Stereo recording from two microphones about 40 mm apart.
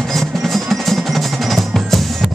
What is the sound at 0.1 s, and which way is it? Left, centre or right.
Music, centre.